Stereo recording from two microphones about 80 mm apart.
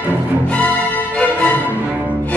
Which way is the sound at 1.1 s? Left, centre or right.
Centre.